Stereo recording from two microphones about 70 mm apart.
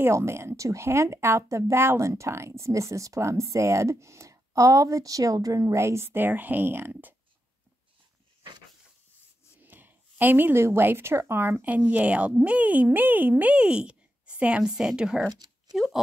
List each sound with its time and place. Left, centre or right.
0.0 s speech: right
5.6 s speech: right
9.6 s speech: right; by 15.9 s centre